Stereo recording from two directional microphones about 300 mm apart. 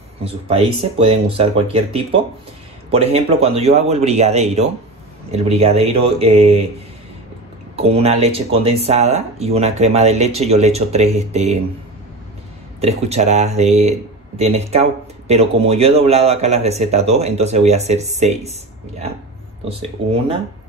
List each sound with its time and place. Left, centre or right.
0.2 s speech: centre
7.7 s speech: centre
12.8 s speech: right